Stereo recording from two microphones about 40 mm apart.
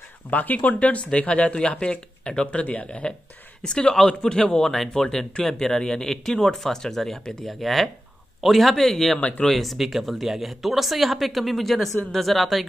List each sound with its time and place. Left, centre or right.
0.3 s speech: left
3.6 s a man's voice: left; by 12.6 s centre